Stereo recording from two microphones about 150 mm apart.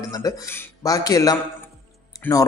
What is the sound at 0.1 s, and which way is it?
A man's voice, 20° left (ahead or behind).